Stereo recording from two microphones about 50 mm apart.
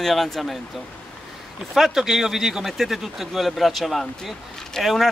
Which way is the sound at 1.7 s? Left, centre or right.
Centre.